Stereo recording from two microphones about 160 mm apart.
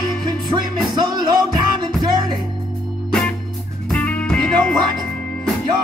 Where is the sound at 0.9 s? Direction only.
30° right (ahead or behind).